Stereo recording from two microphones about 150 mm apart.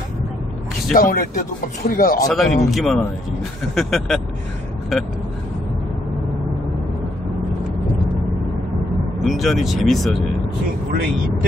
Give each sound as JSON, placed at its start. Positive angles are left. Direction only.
{"t": 0.9, "sound": "speech", "side_deg": 70}
{"t": 2.2, "sound": "speech", "side_deg": 5}
{"t": 9.2, "sound": "speech", "side_deg": 0}